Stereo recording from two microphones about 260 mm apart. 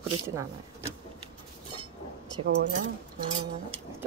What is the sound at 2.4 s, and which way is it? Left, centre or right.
Speech, right.